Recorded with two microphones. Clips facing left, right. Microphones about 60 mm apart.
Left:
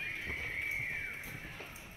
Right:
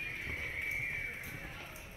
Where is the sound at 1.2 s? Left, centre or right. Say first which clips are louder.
Right 1 dB; right.